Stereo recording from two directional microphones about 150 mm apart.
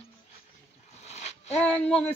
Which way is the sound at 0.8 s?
45° left (ahead or behind).